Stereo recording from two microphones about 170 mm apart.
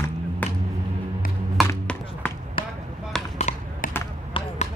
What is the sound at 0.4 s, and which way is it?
Music, 10° left (ahead or behind).